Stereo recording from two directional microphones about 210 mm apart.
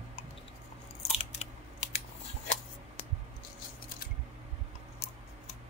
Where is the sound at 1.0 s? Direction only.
30° left (ahead or behind).